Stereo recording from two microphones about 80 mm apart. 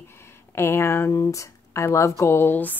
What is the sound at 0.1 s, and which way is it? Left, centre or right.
Speech, left.